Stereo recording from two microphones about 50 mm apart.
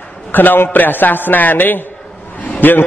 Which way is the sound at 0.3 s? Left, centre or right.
Left.